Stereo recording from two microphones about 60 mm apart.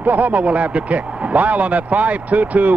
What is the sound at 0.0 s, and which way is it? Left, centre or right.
Speech, right.